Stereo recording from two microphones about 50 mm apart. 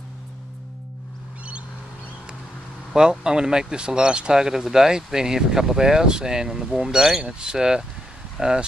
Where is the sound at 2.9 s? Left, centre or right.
Centre.